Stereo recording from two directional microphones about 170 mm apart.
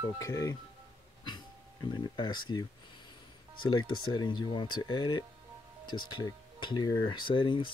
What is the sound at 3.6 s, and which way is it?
Speech, 25° left (ahead or behind).